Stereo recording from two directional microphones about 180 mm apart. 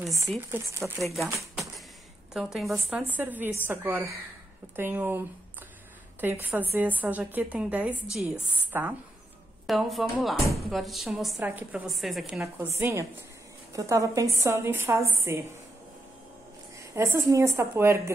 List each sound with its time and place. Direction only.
0.5 s a woman's voice: 15° right (ahead or behind)
1.1 s a woman's voice: centre (ahead or behind)
6.2 s a woman's voice: 10° right (ahead or behind)
12.5 s a woman's voice: 15° right (ahead or behind)
16.7 s a woman's voice: 15° right (ahead or behind)